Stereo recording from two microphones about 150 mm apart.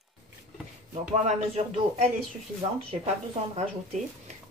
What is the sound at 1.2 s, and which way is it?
Speech, 45° right (ahead or behind).